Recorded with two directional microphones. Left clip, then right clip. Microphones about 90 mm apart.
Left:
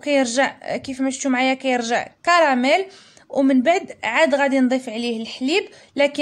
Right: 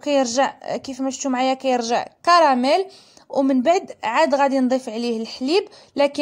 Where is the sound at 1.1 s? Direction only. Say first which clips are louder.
Left 1 dB; 30° right (ahead or behind).